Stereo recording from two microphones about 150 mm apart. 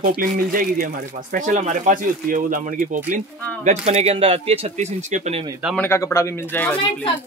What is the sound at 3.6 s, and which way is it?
Speech, 45° right (ahead or behind).